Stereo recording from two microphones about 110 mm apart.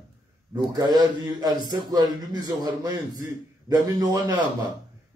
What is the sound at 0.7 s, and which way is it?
A man's voice, 35° right (ahead or behind).